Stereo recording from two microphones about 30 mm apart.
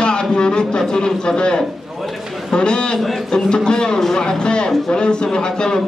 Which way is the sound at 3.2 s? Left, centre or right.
Left.